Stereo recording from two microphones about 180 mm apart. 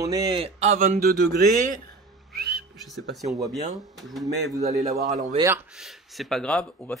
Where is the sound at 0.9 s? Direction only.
55° right (ahead or behind).